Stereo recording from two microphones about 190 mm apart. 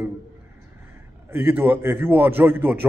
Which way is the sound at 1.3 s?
10° right (ahead or behind).